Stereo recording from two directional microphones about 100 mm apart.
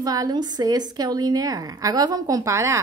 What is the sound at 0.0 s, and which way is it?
A woman's voice, 40° right (ahead or behind).